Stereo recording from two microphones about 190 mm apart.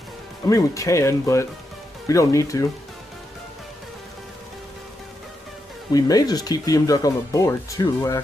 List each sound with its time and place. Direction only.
0.5 s speech: 15° left (ahead or behind)
5.9 s speech: 20° left (ahead or behind)